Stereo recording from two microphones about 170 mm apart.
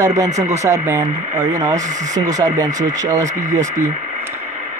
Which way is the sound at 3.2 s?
45° right (ahead or behind).